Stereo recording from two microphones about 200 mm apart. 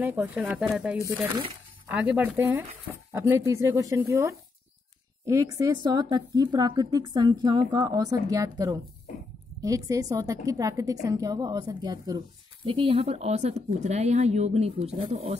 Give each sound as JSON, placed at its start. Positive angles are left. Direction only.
{"t": 0.0, "sound": "a woman's voice", "side_deg": -10}
{"t": 1.0, "sound": "a woman's voice", "side_deg": -15}